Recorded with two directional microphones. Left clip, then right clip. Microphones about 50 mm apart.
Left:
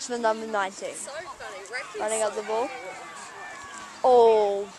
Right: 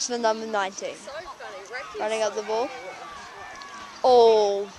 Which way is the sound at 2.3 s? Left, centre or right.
Left.